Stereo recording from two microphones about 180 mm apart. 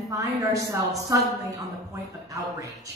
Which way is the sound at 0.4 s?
20° right (ahead or behind).